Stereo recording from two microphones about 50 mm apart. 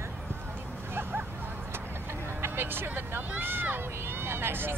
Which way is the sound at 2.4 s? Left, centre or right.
Right.